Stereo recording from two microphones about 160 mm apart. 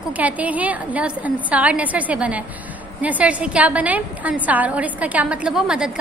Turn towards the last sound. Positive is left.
turn(degrees=-5)  # may be behind; listen again after turning